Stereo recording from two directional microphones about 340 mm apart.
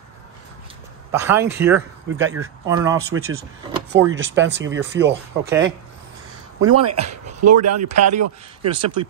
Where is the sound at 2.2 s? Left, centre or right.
Right.